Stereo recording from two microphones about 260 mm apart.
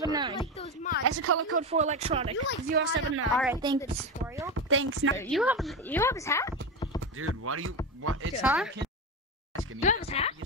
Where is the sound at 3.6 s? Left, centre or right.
Centre.